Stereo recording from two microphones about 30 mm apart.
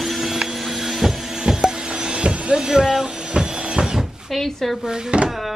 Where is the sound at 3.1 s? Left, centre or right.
Right.